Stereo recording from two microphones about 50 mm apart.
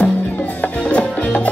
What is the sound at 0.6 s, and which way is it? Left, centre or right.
Music, left.